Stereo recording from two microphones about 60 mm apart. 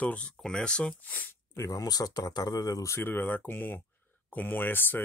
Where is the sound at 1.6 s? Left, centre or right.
Left.